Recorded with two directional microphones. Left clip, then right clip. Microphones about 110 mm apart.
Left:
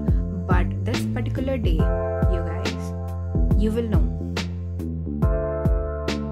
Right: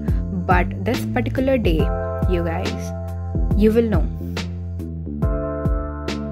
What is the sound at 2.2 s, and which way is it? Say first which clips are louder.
Music: right 6 dB; 45° right (ahead or behind).